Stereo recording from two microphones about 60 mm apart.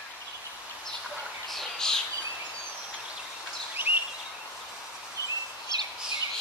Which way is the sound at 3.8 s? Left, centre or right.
Right.